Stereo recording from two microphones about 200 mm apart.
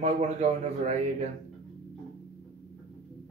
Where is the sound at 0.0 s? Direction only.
35° right (ahead or behind).